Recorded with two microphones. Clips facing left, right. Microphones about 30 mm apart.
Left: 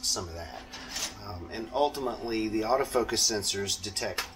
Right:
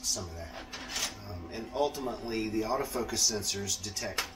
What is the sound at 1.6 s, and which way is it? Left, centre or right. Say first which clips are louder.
Speech: left 3 dB; left.